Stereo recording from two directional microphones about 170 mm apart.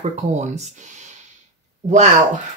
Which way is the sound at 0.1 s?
40° right (ahead or behind).